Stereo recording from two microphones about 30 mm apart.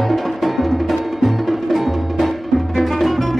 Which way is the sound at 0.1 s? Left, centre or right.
Centre.